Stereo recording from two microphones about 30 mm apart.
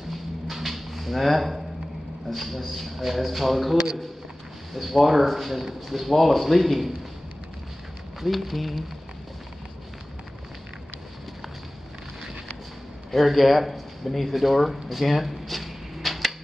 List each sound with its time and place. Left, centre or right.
0.5 s a sound: centre
2.2 s speech: centre
4.7 s speech: centre
8.2 s speech: centre
13.1 s speech: centre